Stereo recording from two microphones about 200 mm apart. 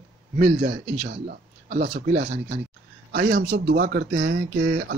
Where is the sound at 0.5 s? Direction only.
50° right (ahead or behind).